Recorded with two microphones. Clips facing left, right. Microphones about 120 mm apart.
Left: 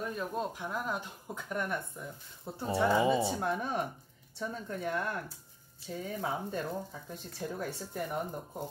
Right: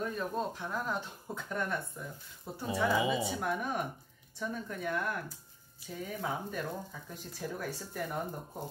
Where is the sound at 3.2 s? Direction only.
25° left (ahead or behind).